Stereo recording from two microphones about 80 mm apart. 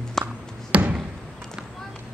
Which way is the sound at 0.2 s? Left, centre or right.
Centre.